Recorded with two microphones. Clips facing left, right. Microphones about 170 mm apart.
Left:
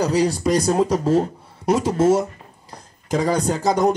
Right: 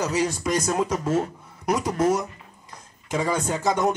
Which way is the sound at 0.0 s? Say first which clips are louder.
Left 6 dB; 35° left (ahead or behind).